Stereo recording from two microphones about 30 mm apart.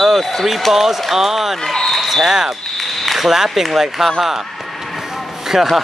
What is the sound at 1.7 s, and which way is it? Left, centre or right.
Speech, centre.